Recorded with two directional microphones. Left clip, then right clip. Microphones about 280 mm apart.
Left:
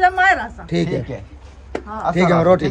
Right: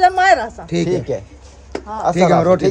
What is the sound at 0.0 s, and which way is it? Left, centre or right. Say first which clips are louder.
Speech: right 2 dB; right.